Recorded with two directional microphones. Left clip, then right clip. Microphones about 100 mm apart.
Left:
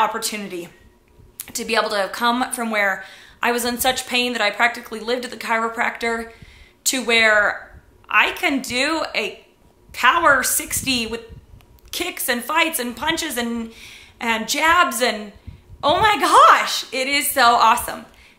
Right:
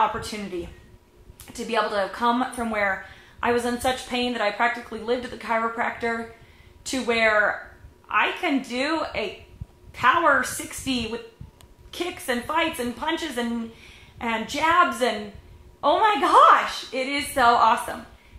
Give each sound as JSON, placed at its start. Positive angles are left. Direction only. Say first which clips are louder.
{"t": 1.5, "sound": "a woman's voice", "louder": "left 4 dB", "side_deg": 25}